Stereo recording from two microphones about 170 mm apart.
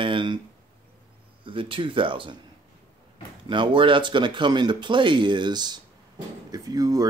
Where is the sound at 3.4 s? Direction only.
30° right (ahead or behind).